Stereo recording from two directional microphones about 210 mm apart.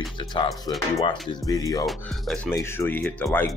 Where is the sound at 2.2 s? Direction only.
Centre (ahead or behind).